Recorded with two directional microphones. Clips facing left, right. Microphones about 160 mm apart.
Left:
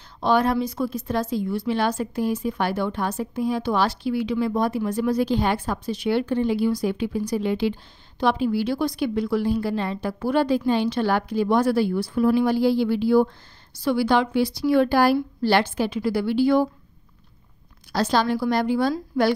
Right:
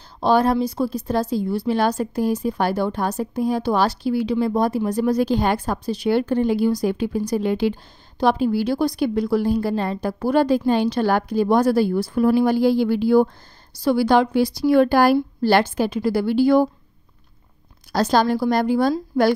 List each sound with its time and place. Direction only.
0.2 s a woman's voice: 35° right (ahead or behind)
17.9 s a woman's voice: 45° right (ahead or behind)